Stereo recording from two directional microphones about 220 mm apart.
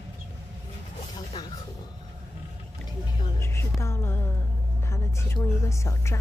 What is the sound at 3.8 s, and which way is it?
Speech, 10° left (ahead or behind).